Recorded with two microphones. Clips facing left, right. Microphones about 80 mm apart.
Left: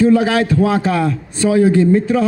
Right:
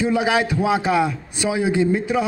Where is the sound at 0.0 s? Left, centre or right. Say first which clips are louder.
Left 6 dB; centre.